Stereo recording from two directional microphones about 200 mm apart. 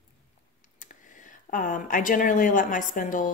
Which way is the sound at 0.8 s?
40° left (ahead or behind).